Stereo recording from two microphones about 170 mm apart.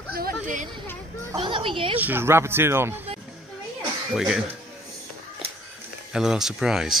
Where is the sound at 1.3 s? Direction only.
30° right (ahead or behind).